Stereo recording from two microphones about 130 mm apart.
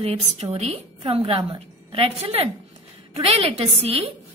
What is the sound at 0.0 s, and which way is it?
A woman's voice, 55° right (ahead or behind).